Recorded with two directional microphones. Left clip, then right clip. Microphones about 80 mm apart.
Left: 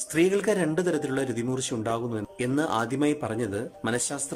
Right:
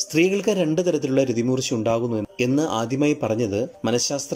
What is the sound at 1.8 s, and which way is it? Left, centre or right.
A man's voice, right.